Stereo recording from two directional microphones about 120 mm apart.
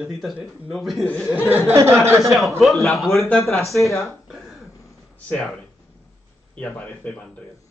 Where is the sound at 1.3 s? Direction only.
15° right (ahead or behind).